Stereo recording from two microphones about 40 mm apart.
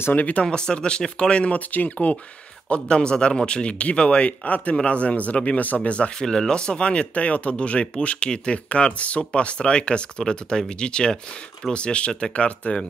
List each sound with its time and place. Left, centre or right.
0.1 s speech: left
0.4 s speech: left
1.4 s speech: left
2.7 s speech: left
6.1 s speech: centre